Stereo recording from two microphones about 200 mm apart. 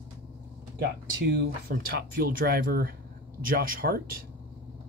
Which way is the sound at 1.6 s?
50° right (ahead or behind).